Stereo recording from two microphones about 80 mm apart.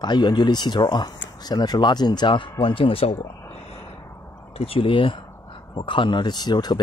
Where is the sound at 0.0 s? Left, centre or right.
Left.